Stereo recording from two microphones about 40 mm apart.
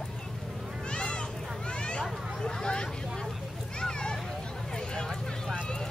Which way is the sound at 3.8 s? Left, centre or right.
Centre.